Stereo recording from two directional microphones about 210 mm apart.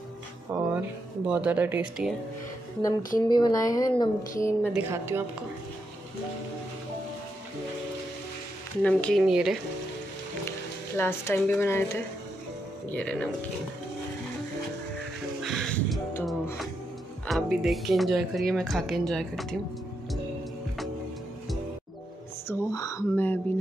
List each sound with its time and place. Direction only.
0.5 s speech: 10° right (ahead or behind)
3.2 s speech: 20° left (ahead or behind)
4.7 s speech: 10° right (ahead or behind)
8.8 s speech: 5° left (ahead or behind)
11.0 s speech: 10° left (ahead or behind)
15.4 s music: centre (ahead or behind)
17.3 s speech: centre (ahead or behind)
22.5 s speech: 15° left (ahead or behind)